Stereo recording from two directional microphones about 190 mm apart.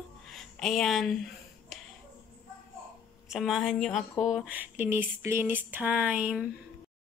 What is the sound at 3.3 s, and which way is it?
Speech, centre (ahead or behind).